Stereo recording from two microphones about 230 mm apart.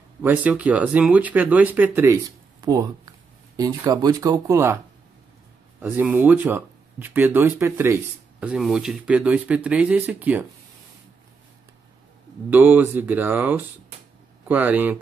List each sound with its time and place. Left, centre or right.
0.2 s speech: centre
5.8 s speech: centre
12.4 s speech: centre